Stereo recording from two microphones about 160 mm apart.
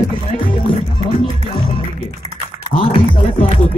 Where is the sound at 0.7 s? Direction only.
30° left (ahead or behind).